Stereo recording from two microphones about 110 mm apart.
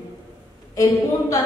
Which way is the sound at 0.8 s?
30° left (ahead or behind).